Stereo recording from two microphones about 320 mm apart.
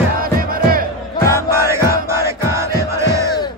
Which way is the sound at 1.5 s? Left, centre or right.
Centre.